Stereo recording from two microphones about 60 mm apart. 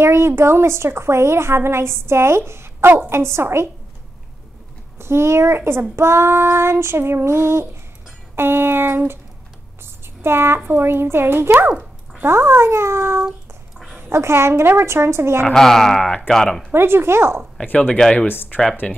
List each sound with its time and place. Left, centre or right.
0.0 s a woman's voice: right
4.9 s a woman's voice: right
10.2 s a woman's voice: right
15.5 s speech: centre
16.7 s a woman's voice: right
17.7 s speech: left
18.1 s speech: left
18.8 s speech: left